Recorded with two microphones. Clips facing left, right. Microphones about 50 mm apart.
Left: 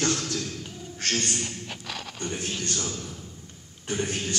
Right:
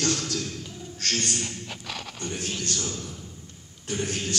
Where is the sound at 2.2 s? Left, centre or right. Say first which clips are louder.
Left 1 dB; centre.